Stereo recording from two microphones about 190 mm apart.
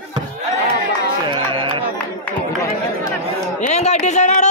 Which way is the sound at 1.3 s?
25° right (ahead or behind).